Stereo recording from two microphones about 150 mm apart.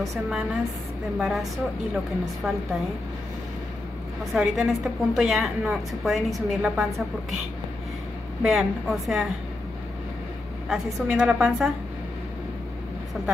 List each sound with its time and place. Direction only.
0.1 s a woman's voice: centre (ahead or behind)
4.2 s a woman's voice: centre (ahead or behind)
8.4 s a woman's voice: 5° right (ahead or behind)
10.7 s a woman's voice: 5° right (ahead or behind)